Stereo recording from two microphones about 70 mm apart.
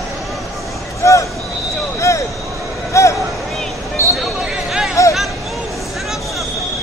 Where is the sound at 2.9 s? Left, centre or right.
Left.